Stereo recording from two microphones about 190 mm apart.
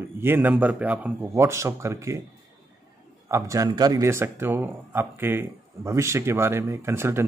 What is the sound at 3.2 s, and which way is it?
Speech, 15° right (ahead or behind).